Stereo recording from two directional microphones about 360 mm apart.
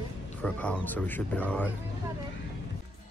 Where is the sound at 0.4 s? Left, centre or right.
Centre.